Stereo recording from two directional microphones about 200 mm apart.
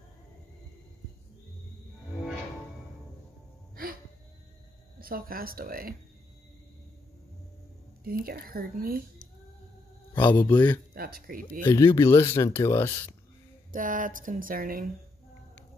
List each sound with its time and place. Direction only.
3.7 s music: 45° right (ahead or behind)
5.0 s speech: 45° right (ahead or behind)
8.0 s speech: 50° right (ahead or behind)
10.2 s speech: 10° left (ahead or behind)
10.9 s speech: 50° right (ahead or behind)
11.6 s speech: 15° left (ahead or behind)
13.7 s speech: 40° right (ahead or behind)